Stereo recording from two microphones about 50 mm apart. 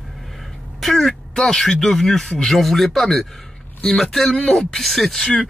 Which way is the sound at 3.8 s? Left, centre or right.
Centre.